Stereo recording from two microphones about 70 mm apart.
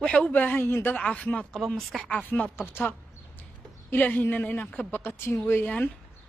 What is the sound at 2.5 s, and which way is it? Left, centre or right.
Speech, left.